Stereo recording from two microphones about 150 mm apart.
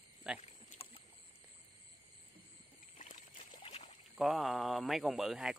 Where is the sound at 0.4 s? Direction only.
45° left (ahead or behind).